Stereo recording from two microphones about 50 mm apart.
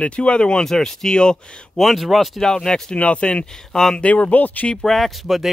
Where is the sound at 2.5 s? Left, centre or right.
Centre.